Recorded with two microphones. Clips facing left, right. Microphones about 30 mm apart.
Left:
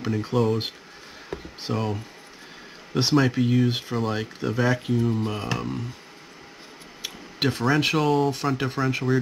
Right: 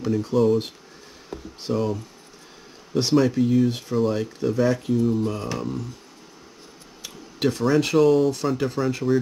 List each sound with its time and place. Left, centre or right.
0.0 s speech: left
1.3 s a sound: left
2.9 s speech: left
7.0 s tick-tock: left
7.8 s speech: centre